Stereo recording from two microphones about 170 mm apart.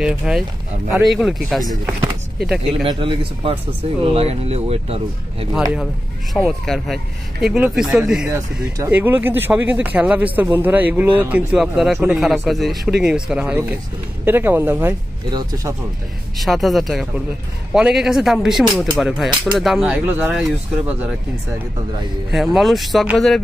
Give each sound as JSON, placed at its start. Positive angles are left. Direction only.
{"t": 0.0, "sound": "speech", "side_deg": 0}
{"t": 2.8, "sound": "speech", "side_deg": -30}
{"t": 6.3, "sound": "speech", "side_deg": 0}
{"t": 8.3, "sound": "speech", "side_deg": -15}
{"t": 15.2, "sound": "speech", "side_deg": -25}
{"t": 16.3, "sound": "speech", "side_deg": 0}
{"t": 22.3, "sound": "speech", "side_deg": 0}